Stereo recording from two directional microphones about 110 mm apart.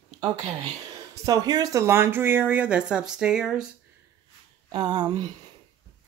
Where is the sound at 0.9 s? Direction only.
35° right (ahead or behind); by 3.6 s 5° right (ahead or behind).